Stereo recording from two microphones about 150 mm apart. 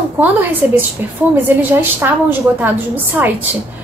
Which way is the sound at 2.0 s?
15° right (ahead or behind).